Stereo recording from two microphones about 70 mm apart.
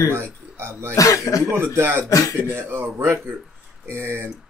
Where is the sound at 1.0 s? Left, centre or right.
Left.